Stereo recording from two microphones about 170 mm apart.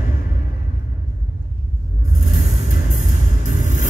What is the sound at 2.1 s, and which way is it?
Vehicle, 60° left (ahead or behind).